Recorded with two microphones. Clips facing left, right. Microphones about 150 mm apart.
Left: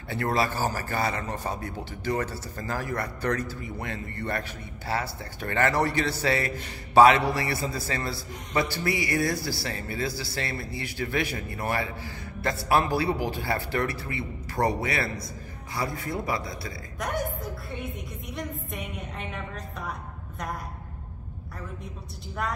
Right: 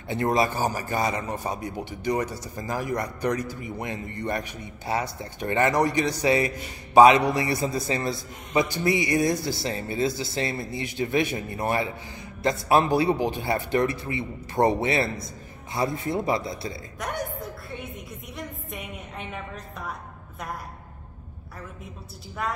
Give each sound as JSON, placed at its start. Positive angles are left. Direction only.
{"t": 0.1, "sound": "a man's voice", "side_deg": -20}
{"t": 17.0, "sound": "a woman's voice", "side_deg": 0}
{"t": 22.4, "sound": "a woman's voice", "side_deg": 0}